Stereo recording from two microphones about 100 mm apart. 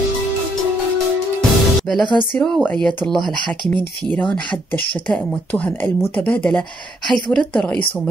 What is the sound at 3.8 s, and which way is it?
Speech, 15° left (ahead or behind).